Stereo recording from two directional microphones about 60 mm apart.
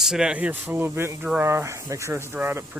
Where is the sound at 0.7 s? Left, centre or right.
Right.